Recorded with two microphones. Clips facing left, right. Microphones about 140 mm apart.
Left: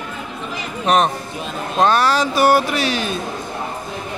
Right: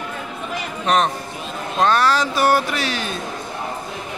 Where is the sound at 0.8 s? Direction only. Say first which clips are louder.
Left 3 dB; 15° left (ahead or behind).